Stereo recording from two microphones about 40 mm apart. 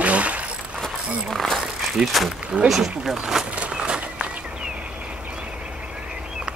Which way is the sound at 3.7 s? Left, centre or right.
Right.